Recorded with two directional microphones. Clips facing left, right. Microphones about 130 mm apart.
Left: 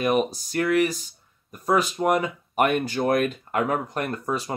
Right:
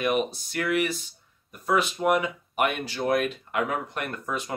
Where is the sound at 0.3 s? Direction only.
40° left (ahead or behind).